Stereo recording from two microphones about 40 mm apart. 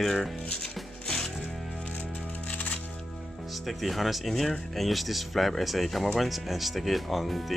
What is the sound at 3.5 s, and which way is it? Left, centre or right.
Speech, centre.